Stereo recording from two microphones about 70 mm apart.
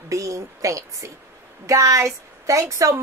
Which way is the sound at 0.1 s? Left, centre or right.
Right.